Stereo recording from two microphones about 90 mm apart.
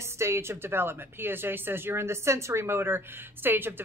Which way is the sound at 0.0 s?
30° right (ahead or behind).